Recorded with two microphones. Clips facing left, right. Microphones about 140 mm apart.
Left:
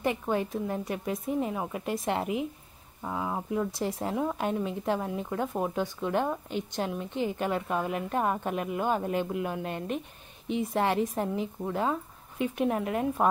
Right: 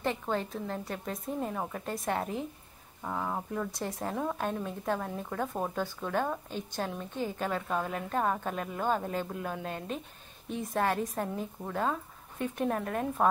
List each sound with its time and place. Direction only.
0.0 s a woman's voice: 15° left (ahead or behind)
10.7 s a woman's voice: 20° left (ahead or behind)
11.6 s a woman's voice: 10° left (ahead or behind)